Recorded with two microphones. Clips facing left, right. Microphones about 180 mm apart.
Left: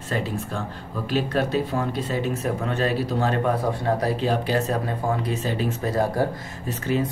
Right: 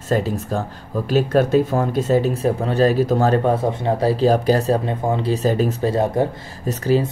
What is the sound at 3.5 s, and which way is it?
Speech, 25° right (ahead or behind).